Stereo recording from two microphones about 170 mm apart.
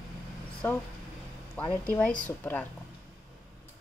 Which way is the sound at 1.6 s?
10° left (ahead or behind).